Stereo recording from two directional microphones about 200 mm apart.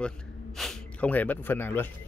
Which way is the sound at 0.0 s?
Centre (ahead or behind).